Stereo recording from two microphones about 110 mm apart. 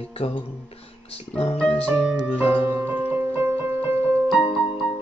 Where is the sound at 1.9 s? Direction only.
15° right (ahead or behind).